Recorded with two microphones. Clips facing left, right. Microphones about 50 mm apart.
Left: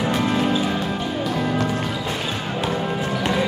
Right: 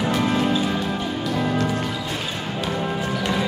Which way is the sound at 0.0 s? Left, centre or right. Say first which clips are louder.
Even; centre.